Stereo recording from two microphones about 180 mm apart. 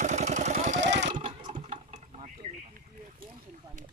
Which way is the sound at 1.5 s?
35° right (ahead or behind).